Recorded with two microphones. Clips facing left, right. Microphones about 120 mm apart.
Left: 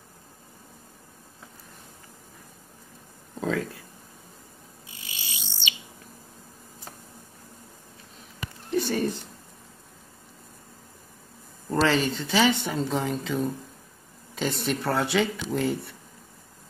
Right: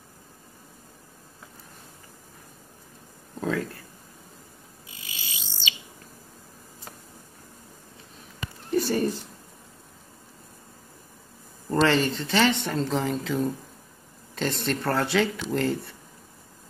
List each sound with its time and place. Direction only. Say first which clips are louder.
3.3 s a sound: even; centre (ahead or behind)
4.9 s bird: even; 25° left (ahead or behind)
8.7 s speech: right 2 dB; 5° right (ahead or behind)
11.7 s speech: right 1 dB; centre (ahead or behind)